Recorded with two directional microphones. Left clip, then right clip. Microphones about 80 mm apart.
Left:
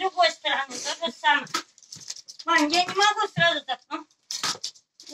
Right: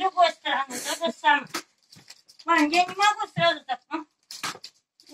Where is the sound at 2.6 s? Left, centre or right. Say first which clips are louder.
Even; right.